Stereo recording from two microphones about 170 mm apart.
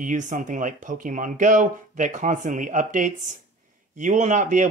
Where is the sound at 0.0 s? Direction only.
45° right (ahead or behind).